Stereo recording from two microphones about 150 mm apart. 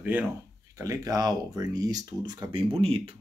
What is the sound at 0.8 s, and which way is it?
Speech, 20° right (ahead or behind).